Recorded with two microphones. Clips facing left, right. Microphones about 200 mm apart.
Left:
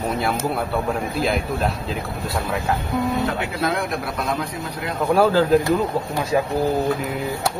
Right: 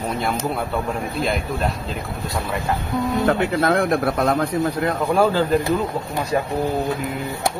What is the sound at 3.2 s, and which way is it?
Speech, 50° right (ahead or behind).